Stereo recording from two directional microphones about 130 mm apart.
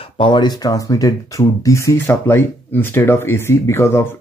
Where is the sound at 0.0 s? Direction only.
40° left (ahead or behind).